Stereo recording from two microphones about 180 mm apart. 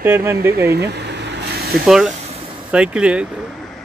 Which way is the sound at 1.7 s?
Centre (ahead or behind).